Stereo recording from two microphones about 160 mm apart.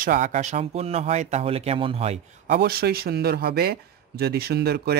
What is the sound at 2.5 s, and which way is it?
Speech, 75° right (ahead or behind).